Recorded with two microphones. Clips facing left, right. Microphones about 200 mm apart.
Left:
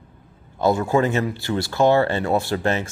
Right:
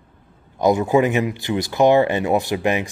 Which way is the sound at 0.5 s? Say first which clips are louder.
Right 3 dB; 15° right (ahead or behind).